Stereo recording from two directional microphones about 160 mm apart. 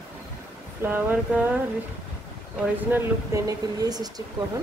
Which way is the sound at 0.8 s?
10° right (ahead or behind).